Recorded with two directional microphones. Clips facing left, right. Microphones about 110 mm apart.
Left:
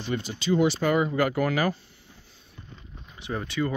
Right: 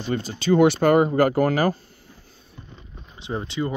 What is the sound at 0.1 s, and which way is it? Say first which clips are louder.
Speech: right 3 dB; 40° right (ahead or behind).